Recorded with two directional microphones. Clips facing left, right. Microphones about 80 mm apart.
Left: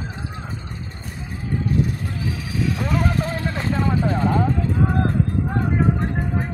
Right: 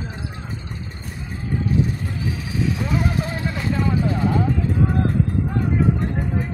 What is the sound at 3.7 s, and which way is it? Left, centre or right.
Vehicle, left.